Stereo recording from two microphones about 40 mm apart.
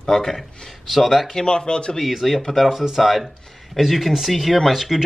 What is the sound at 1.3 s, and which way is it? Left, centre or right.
Speech, centre.